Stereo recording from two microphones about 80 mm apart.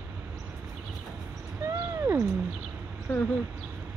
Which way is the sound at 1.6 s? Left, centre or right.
Right.